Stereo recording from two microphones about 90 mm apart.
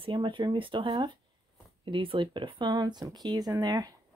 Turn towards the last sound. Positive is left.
turn(degrees=-45)  # may be behind; listen again after turning